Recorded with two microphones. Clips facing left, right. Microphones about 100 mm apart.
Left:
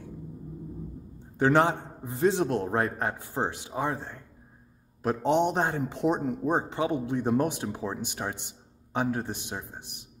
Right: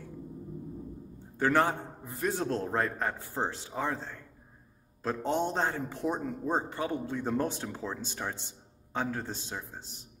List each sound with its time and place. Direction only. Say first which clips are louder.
1.4 s speech: left 4 dB; 20° left (ahead or behind)